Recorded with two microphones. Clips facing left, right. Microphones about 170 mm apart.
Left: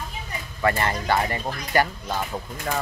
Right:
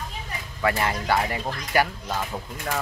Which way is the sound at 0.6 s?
5° right (ahead or behind).